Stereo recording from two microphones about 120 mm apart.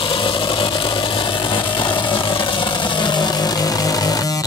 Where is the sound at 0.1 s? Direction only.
40° left (ahead or behind).